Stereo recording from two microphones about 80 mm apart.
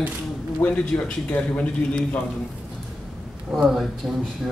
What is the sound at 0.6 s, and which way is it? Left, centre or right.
A man's voice, centre.